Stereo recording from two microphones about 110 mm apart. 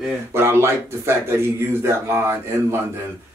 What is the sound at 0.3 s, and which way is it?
Speech, 20° right (ahead or behind).